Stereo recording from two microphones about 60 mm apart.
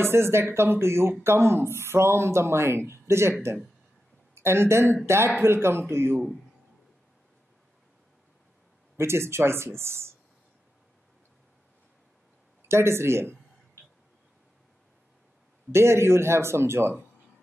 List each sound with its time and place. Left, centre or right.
0.0 s speech: right
4.4 s speech: right
8.9 s speech: right
12.6 s speech: right
15.7 s speech: right